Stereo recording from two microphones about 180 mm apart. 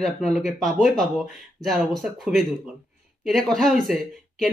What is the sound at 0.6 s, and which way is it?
Speech, 40° left (ahead or behind).